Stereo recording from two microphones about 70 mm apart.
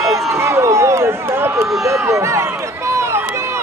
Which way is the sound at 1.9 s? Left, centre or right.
Right.